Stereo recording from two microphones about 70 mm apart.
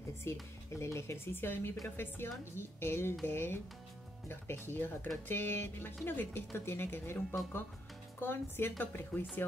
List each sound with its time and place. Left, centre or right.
0.2 s speech: left